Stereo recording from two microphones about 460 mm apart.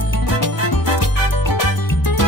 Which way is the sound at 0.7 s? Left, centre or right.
Left.